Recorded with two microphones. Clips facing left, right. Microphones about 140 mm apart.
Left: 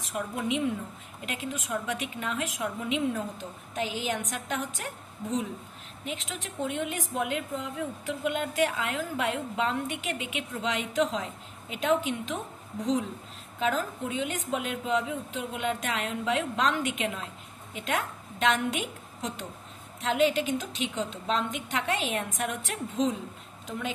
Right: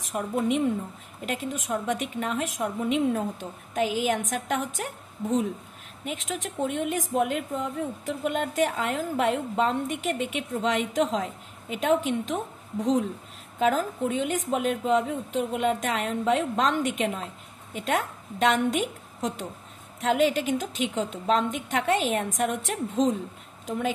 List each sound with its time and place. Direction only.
0.1 s speech: 45° right (ahead or behind)
13.6 s a woman's voice: 45° right (ahead or behind)